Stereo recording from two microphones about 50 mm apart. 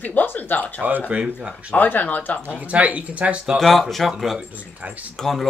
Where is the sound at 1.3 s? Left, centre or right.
Right.